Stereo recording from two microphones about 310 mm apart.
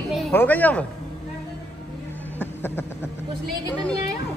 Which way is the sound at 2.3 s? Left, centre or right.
Centre.